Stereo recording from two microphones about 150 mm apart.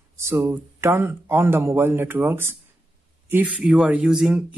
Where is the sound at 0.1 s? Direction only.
15° right (ahead or behind).